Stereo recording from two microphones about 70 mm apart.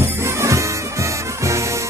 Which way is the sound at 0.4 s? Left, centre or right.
Right.